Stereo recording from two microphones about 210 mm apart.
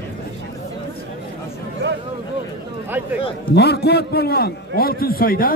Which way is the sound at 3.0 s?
5° right (ahead or behind).